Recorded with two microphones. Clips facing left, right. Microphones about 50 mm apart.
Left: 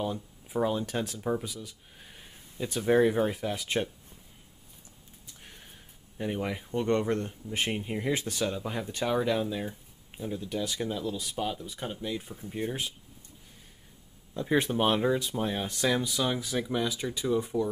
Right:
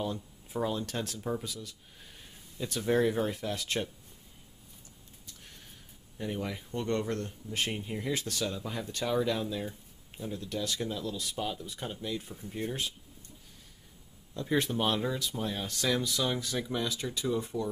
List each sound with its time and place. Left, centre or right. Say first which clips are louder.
0.0 s speech: left 2 dB; centre
5.2 s a sound: left 2 dB; left
6.1 s speech: left 3 dB; centre
14.3 s speech: left 3 dB; centre